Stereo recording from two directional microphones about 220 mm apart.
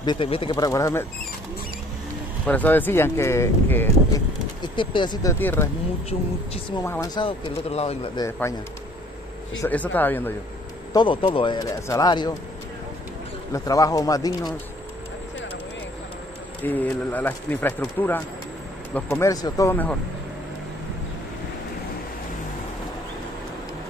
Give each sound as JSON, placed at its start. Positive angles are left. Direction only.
{"t": 0.0, "sound": "a man's voice", "side_deg": 20}
{"t": 2.4, "sound": "speech", "side_deg": 5}
{"t": 5.4, "sound": "speech", "side_deg": 10}
{"t": 6.8, "sound": "speech", "side_deg": 15}
{"t": 7.2, "sound": "a man's voice", "side_deg": 25}
{"t": 8.3, "sound": "speech", "side_deg": 10}
{"t": 9.6, "sound": "speech", "side_deg": 10}
{"t": 10.9, "sound": "a man's voice", "side_deg": 20}
{"t": 13.5, "sound": "speech", "side_deg": 15}
{"t": 16.6, "sound": "speech", "side_deg": 10}